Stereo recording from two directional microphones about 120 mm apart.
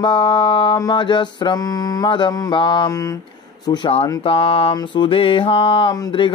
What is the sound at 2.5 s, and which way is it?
Mantra, 45° left (ahead or behind).